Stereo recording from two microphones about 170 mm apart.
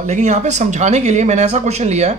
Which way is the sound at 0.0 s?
45° right (ahead or behind).